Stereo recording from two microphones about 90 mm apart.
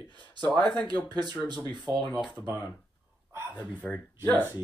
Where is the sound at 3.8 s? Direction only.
15° left (ahead or behind).